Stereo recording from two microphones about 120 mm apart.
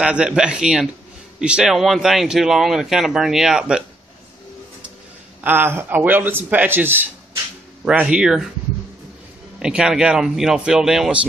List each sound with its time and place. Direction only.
0.0 s a man's voice: 10° right (ahead or behind)
5.4 s a man's voice: 15° right (ahead or behind)
9.6 s speech: 5° right (ahead or behind)